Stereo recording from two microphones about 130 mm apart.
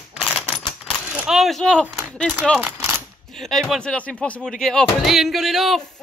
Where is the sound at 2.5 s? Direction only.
15° right (ahead or behind).